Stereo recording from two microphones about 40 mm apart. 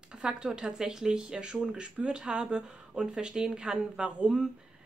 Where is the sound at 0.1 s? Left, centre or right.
Centre.